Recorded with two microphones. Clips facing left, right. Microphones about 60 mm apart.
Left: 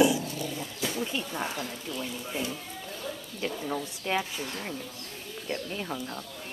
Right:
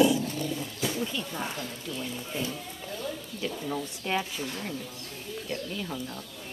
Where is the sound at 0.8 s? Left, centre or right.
Centre.